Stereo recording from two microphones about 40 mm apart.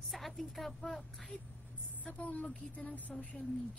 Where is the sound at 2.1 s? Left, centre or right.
Left.